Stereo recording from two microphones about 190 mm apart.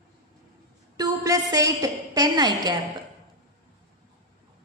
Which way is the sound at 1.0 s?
20° right (ahead or behind).